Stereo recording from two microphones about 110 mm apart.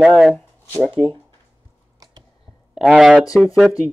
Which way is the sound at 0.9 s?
40° right (ahead or behind).